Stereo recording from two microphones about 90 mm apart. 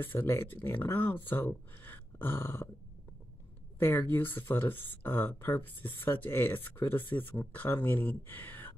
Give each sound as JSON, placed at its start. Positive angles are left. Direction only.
{"t": 0.0, "sound": "speech", "side_deg": 25}
{"t": 3.8, "sound": "speech", "side_deg": 25}